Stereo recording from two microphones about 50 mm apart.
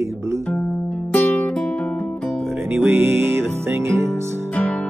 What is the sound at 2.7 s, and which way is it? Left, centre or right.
Music, right.